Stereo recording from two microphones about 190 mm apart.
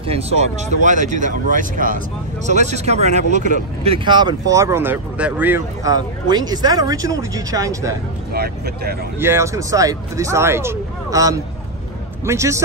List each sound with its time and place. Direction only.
0.0 s speech: 30° right (ahead or behind)
8.3 s speech: 55° right (ahead or behind)
9.2 s speech: 15° right (ahead or behind)